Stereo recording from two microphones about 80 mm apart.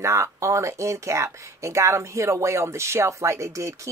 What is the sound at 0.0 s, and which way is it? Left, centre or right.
Speech, right.